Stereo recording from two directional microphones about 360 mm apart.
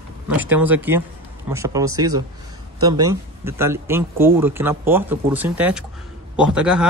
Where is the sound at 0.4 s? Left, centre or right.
Centre.